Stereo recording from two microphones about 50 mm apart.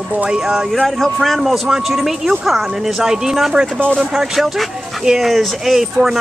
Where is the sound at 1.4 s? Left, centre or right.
Centre.